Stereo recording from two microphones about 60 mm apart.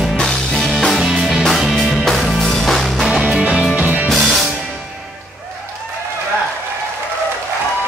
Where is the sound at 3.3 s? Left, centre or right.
Centre.